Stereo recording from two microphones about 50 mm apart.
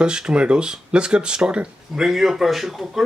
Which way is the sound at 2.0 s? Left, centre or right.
Centre.